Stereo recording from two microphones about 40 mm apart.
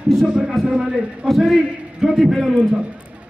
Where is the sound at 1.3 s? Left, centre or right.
Centre.